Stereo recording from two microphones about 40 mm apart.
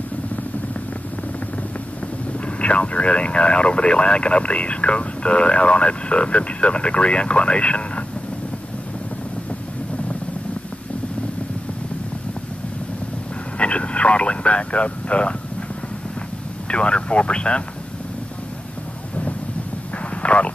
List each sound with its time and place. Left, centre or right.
2.4 s speech: left
13.6 s vehicle: left
16.6 s speech: left
20.2 s vehicle: left